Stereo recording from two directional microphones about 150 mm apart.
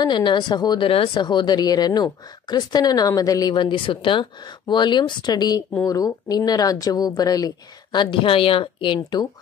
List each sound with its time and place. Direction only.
0.0 s a woman's voice: 30° left (ahead or behind)